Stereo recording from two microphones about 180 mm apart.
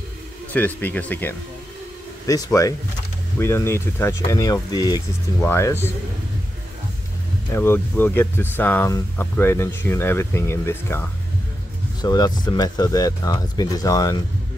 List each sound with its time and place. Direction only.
0.5 s speech: 10° left (ahead or behind)
7.5 s speech: 15° left (ahead or behind)